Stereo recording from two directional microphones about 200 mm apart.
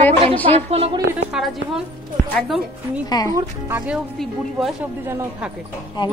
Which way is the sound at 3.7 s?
10° right (ahead or behind).